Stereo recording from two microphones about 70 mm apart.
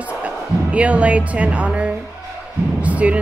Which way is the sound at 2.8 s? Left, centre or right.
Centre.